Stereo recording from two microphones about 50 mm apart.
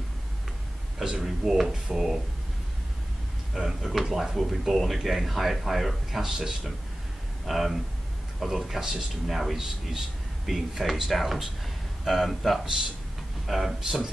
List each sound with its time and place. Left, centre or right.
0.9 s speech: centre
3.5 s a man's voice: centre